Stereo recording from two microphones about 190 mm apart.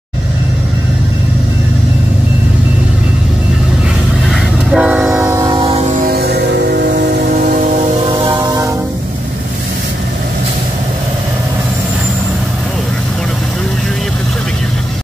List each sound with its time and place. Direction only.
4.3 s train: 5° right (ahead or behind); by 6.0 s 35° right (ahead or behind)
6.0 s music: 55° right (ahead or behind)
7.4 s a sound: 40° right (ahead or behind)
8.1 s vehicle: 25° right (ahead or behind)